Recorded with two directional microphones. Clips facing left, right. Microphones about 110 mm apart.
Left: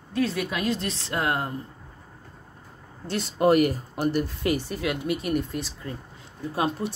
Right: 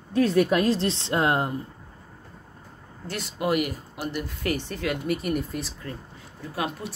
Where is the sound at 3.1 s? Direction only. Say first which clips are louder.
Left 6 dB; 35° left (ahead or behind).